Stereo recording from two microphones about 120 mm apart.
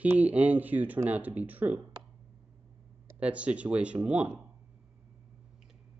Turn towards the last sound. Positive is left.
turn(degrees=-10)  # may be behind; listen again after turning